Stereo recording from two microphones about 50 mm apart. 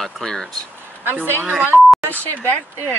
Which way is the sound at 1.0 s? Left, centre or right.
Right.